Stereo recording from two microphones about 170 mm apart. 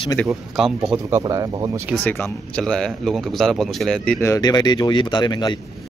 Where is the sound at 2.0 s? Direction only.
10° left (ahead or behind).